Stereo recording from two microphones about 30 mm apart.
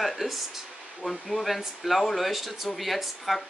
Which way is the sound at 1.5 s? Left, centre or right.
Centre.